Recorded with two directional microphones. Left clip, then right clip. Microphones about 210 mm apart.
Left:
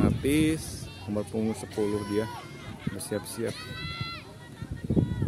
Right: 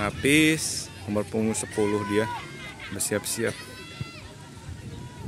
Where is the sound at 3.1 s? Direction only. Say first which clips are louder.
Right 5 dB; centre (ahead or behind).